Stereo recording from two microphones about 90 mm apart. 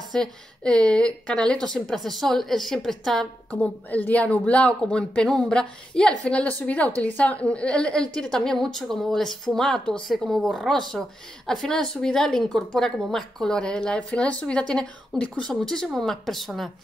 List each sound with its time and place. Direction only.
0.1 s a woman's voice: 5° left (ahead or behind)
3.9 s a woman's voice: 15° left (ahead or behind)